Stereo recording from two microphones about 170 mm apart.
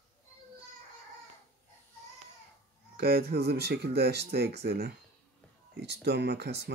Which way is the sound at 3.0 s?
65° right (ahead or behind).